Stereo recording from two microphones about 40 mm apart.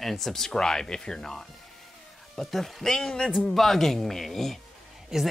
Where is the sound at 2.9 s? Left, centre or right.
Centre.